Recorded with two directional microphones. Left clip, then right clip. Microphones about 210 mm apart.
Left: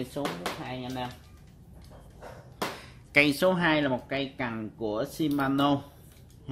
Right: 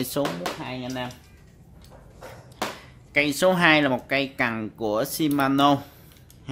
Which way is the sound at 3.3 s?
5° right (ahead or behind).